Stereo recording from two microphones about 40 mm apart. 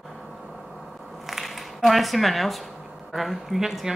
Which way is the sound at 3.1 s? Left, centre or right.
Centre.